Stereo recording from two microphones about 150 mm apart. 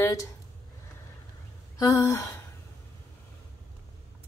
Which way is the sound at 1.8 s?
20° left (ahead or behind).